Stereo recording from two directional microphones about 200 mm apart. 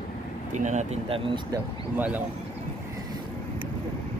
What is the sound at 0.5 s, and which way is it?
Speech, 35° right (ahead or behind).